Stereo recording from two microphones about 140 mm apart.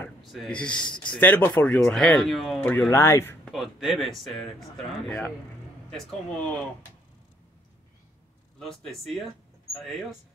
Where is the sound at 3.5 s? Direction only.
Centre (ahead or behind).